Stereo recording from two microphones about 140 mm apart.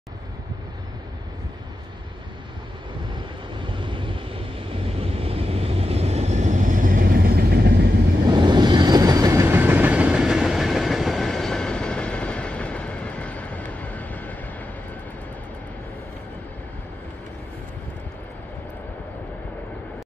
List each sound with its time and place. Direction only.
3.5 s vehicle: 35° right (ahead or behind)
4.8 s train: 45° right (ahead or behind); by 7.7 s 90° right
8.3 s train: 30° right (ahead or behind); by 14.3 s 10° left (ahead or behind)